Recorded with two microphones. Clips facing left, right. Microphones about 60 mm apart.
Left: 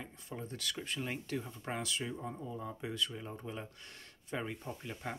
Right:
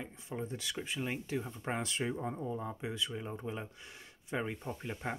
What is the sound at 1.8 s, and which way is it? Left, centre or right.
Speech, right.